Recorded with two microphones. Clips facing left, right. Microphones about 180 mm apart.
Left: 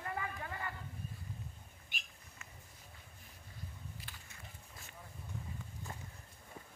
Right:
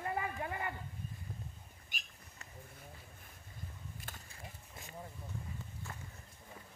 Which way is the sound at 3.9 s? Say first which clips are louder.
Right 3 dB; 45° right (ahead or behind).